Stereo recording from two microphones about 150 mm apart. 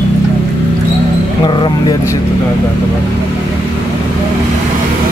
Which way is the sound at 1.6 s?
25° left (ahead or behind).